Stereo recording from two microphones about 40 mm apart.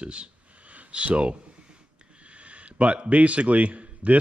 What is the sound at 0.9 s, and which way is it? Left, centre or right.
Speech, right.